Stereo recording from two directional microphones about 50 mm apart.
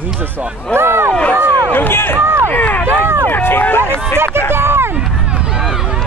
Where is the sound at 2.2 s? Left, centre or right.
Right.